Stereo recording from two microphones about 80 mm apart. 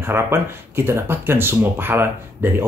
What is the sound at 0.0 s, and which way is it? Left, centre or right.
Speech, right.